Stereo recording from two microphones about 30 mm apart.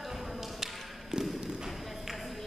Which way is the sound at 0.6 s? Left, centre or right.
Centre.